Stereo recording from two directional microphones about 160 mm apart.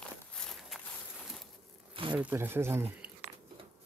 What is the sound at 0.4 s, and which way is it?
Walk, centre (ahead or behind).